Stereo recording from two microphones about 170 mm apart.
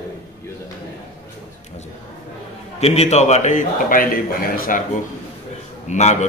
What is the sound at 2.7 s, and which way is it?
A man's voice, 40° left (ahead or behind).